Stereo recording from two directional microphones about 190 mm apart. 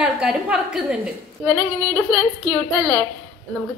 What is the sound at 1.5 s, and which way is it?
A woman's voice, 10° left (ahead or behind).